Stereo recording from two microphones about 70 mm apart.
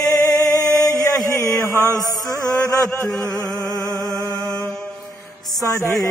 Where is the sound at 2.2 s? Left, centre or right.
Left.